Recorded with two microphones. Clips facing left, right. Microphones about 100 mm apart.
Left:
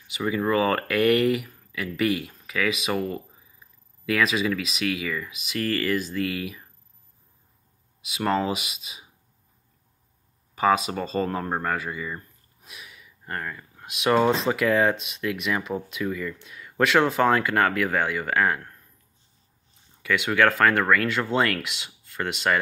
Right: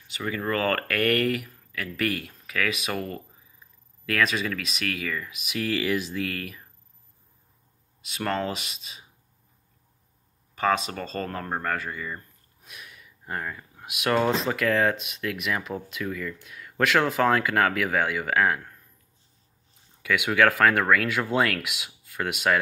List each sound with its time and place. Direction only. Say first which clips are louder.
0.1 s speech: left 5 dB; 10° left (ahead or behind); by 6.1 s 10° right (ahead or behind)
6.1 s speech: left 3 dB; 5° left (ahead or behind)
8.0 s speech: left 4 dB; 5° left (ahead or behind)
10.5 s speech: left 3 dB; 10° left (ahead or behind)
20.0 s speech: even; 5° right (ahead or behind)